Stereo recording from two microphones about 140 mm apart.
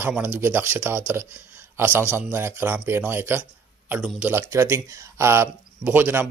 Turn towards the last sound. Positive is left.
turn(degrees=-15)  # may be behind; listen again after turning